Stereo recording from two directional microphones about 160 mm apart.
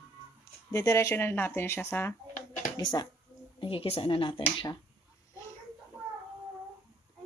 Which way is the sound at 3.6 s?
35° left (ahead or behind).